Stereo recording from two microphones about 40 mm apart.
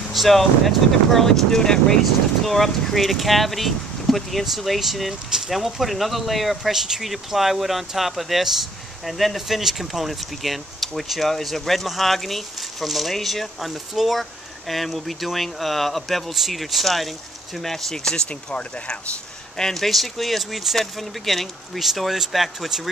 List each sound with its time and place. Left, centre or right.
0.1 s speech: centre
18.3 s speech: left
19.5 s speech: centre